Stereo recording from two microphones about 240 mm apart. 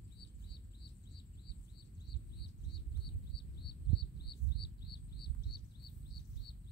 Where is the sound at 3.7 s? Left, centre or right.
Left.